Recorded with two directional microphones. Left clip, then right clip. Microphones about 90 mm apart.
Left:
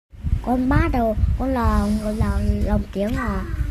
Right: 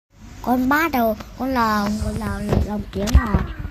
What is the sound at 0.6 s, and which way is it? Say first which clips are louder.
A woman's voice: right 4 dB; 5° left (ahead or behind).